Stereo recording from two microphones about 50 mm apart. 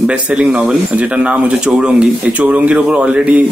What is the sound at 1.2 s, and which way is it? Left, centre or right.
A man's voice, right.